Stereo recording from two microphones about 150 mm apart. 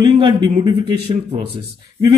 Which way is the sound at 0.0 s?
30° right (ahead or behind).